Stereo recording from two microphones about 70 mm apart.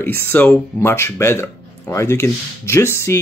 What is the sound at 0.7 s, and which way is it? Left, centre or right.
Speech, left.